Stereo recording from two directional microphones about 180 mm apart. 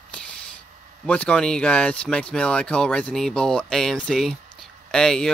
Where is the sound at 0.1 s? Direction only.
5° left (ahead or behind).